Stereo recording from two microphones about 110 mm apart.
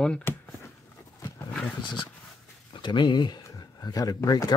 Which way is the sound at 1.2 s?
35° left (ahead or behind).